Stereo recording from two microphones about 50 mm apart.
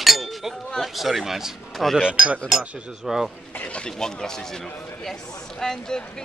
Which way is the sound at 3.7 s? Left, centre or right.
Centre.